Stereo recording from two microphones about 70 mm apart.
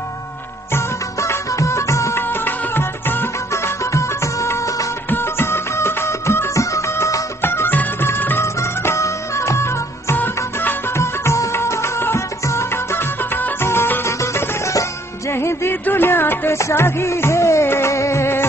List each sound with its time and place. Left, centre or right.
0.7 s music: left
2.4 s music: left
3.9 s music: left
5.1 s music: left
7.4 s music: left
8.5 s music: left
10.1 s music: left
11.0 s music: left